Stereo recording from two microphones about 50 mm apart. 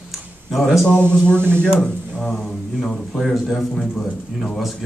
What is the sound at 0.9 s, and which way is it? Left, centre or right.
Speech, left.